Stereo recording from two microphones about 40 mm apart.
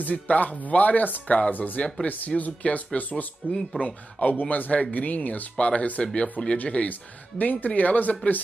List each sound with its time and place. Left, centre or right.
0.0 s speech: left
1.2 s speech: left
1.5 s speech: left